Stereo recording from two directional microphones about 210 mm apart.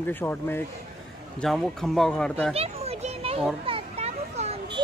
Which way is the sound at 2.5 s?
30° right (ahead or behind).